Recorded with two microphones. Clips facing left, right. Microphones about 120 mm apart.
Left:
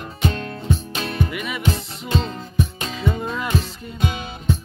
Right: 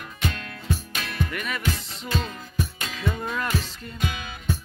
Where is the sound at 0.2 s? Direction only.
30° left (ahead or behind).